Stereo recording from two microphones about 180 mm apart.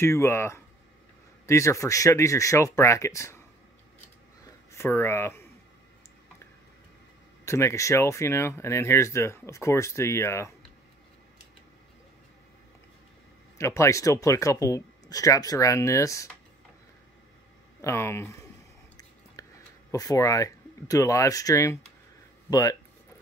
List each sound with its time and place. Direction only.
0.0 s speech: 15° left (ahead or behind)
4.7 s speech: 15° left (ahead or behind)
7.4 s speech: 15° left (ahead or behind)
13.6 s speech: 15° left (ahead or behind)
17.8 s speech: 15° left (ahead or behind)
19.4 s a sound: 20° left (ahead or behind)
19.9 s speech: 20° left (ahead or behind)